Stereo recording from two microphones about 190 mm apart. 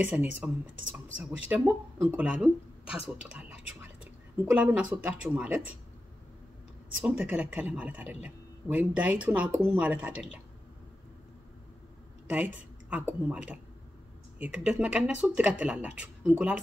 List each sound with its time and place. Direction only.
0.0 s a man's voice: 5° right (ahead or behind)
1.5 s a man's voice: 10° right (ahead or behind)
7.1 s a man's voice: 5° right (ahead or behind)
12.3 s a woman's voice: 10° right (ahead or behind)